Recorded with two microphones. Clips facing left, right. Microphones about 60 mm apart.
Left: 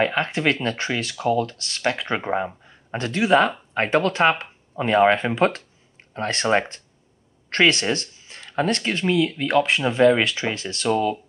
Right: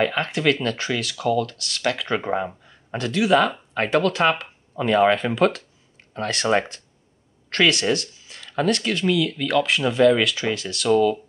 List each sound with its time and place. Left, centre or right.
0.0 s speech: left